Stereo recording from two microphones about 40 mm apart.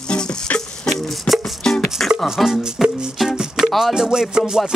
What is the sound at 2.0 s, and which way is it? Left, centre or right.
Music, centre.